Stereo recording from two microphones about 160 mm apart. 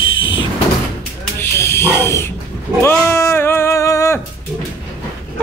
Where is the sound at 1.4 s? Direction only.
15° left (ahead or behind).